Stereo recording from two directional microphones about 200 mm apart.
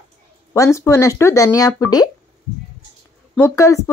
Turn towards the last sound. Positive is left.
turn(degrees=15)  # may be behind; listen again after turning